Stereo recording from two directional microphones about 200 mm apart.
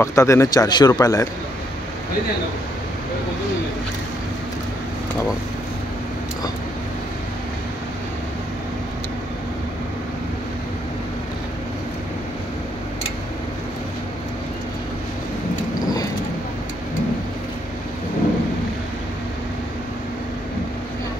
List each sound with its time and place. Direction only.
0.0 s a man's voice: 15° left (ahead or behind)